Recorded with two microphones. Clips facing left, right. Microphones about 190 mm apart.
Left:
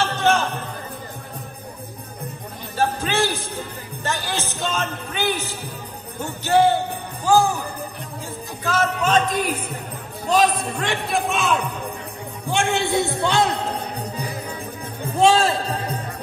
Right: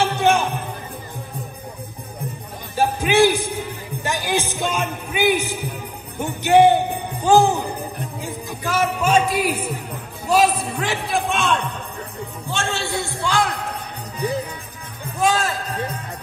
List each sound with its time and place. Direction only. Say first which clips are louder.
0.0 s music: right 2 dB; 15° right (ahead or behind)
2.7 s music: right 4 dB; 15° right (ahead or behind)
6.1 s a man's voice: right 4 dB; 15° right (ahead or behind); by 11.7 s 5° left (ahead or behind)
12.4 s a man's voice: left 5 dB; 15° left (ahead or behind)
15.1 s a sound: left 4 dB; 30° left (ahead or behind)